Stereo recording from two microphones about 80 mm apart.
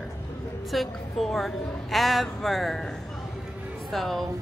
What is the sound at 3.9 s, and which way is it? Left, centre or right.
Speech, centre.